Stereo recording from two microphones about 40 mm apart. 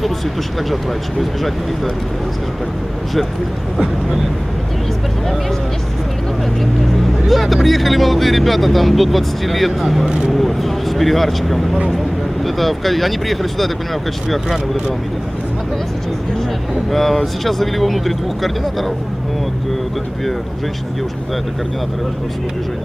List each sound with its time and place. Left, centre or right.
7.2 s speech: centre
10.0 s speech: right
10.3 s speech: centre
16.9 s speech: centre